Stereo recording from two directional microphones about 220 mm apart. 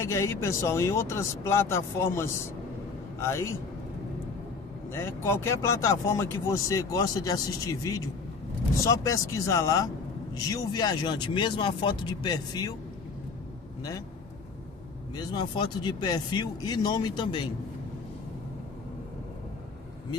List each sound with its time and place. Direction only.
0.0 s speech: 15° left (ahead or behind)
4.9 s speech: 10° left (ahead or behind)
15.1 s speech: 20° left (ahead or behind)